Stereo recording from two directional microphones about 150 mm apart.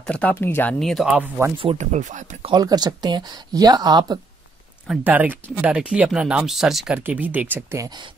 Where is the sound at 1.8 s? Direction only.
55° right (ahead or behind).